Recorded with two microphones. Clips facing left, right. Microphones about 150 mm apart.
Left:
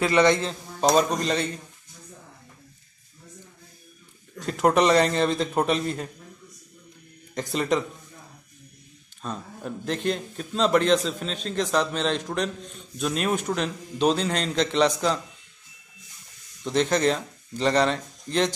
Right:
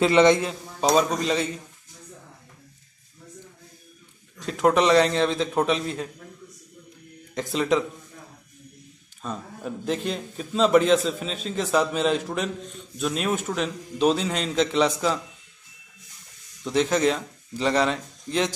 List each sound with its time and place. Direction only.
0.0 s a man's voice: 20° right (ahead or behind)
0.5 s a man's voice: 5° right (ahead or behind)
4.5 s a man's voice: centre (ahead or behind)
7.3 s a man's voice: centre (ahead or behind)
9.2 s a man's voice: 5° right (ahead or behind)
16.6 s a man's voice: 5° right (ahead or behind)